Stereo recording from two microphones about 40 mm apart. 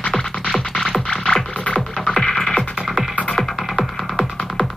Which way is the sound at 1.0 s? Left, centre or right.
Left.